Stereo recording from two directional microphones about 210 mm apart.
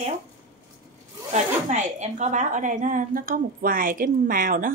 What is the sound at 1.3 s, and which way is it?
Speech, 35° right (ahead or behind).